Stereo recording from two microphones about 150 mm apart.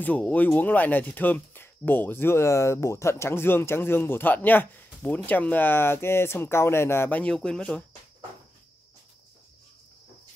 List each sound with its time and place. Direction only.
0.0 s speech: 10° left (ahead or behind)